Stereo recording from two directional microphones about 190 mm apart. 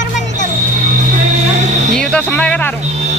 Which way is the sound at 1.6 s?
35° right (ahead or behind).